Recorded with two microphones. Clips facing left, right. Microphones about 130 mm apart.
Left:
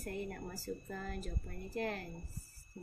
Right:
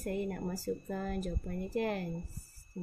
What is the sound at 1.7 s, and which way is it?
Speech, 15° right (ahead or behind).